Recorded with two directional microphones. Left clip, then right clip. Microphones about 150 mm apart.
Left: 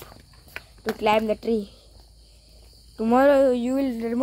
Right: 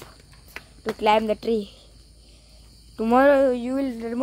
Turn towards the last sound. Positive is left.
turn(degrees=15)  # may be behind; listen again after turning